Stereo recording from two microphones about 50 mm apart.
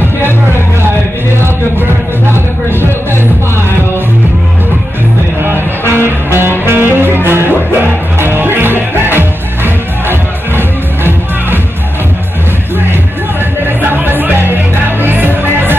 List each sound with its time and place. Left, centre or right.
1.4 s music: right
5.4 s music: right
13.8 s music: right